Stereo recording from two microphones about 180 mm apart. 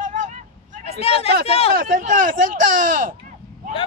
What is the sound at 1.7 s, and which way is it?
Speech, 50° right (ahead or behind).